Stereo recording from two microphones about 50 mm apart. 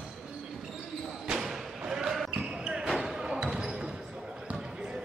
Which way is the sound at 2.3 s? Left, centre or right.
Centre.